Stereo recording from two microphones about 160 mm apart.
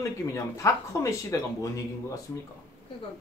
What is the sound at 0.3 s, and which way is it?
Speech, 20° left (ahead or behind).